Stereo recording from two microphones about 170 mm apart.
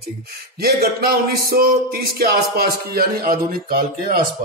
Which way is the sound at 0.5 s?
65° right (ahead or behind).